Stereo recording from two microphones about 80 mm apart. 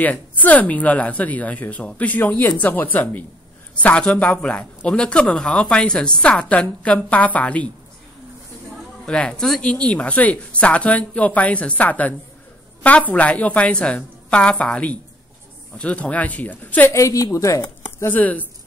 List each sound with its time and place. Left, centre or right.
0.0 s a man's voice: left
9.0 s a man's voice: centre
16.9 s speech: left
17.6 s speech: left